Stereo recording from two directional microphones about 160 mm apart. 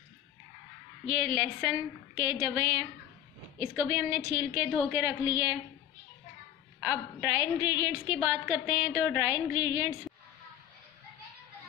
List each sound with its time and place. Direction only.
1.0 s a woman's voice: 30° right (ahead or behind)
6.9 s a woman's voice: 15° right (ahead or behind)